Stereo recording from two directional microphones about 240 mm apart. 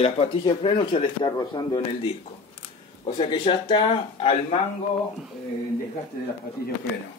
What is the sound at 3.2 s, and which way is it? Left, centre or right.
A man's voice, centre.